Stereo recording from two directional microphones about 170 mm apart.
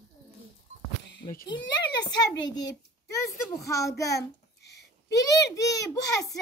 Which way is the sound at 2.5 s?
90° left.